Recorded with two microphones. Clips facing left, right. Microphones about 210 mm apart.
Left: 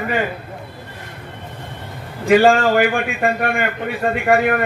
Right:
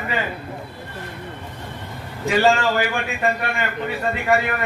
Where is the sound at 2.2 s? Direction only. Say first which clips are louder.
Left 5 dB; 55° left (ahead or behind).